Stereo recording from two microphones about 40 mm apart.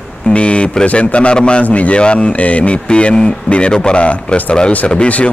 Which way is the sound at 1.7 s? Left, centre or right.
Left.